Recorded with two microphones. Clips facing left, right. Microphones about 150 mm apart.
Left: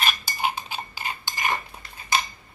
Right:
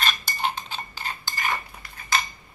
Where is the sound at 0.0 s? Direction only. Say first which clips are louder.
Left 1 dB; 10° left (ahead or behind).